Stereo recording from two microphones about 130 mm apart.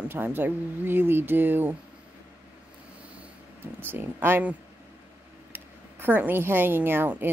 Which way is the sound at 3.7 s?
15° right (ahead or behind).